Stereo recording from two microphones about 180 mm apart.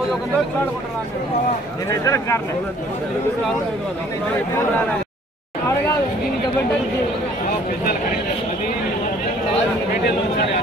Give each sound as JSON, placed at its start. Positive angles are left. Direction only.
{"t": 2.0, "sound": "speech", "side_deg": 15}